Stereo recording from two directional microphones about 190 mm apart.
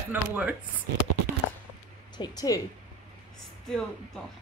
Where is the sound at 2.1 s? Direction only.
20° left (ahead or behind).